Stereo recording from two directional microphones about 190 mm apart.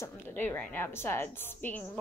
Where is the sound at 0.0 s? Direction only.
10° left (ahead or behind).